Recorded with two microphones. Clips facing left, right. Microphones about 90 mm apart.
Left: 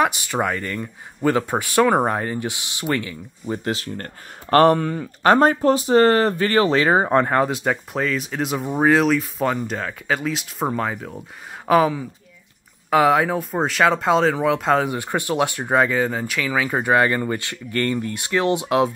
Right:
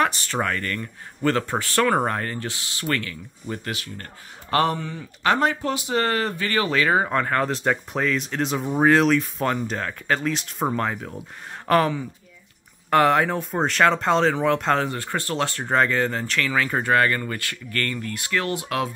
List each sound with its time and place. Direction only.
0.0 s speech: 10° left (ahead or behind)
3.7 s speech: 40° left (ahead or behind); by 7.4 s 25° left (ahead or behind)
7.4 s speech: 5° left (ahead or behind)
15.0 s speech: 15° left (ahead or behind)